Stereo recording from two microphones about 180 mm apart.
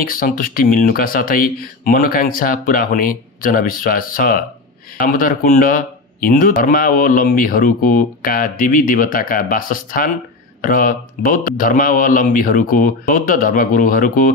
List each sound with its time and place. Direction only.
0.0 s speech: 50° left (ahead or behind)